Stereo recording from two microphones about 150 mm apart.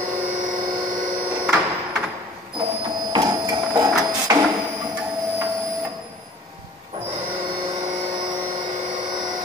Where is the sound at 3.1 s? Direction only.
30° right (ahead or behind).